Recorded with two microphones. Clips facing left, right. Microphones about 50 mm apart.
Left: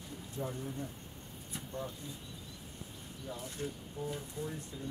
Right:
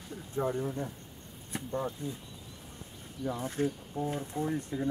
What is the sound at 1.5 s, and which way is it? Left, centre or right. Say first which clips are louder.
Speech: right 7 dB; right.